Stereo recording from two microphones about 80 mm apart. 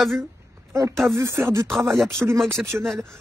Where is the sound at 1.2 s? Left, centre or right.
Right.